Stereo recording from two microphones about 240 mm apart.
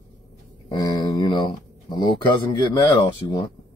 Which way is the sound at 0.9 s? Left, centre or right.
Centre.